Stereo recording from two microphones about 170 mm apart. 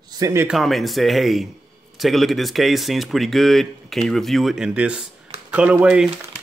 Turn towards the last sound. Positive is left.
turn(degrees=-5)  # may be behind; listen again after turning